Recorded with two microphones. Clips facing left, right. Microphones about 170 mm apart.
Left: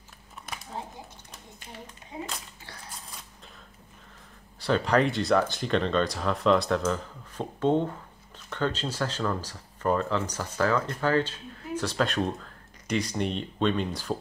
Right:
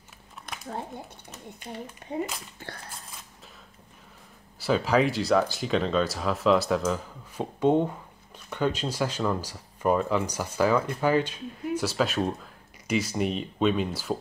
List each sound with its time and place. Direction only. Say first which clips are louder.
0.5 s a sound: even; 5° left (ahead or behind)
2.0 s speech: right 9 dB; 60° right (ahead or behind)
4.6 s speech: right 1 dB; 5° right (ahead or behind)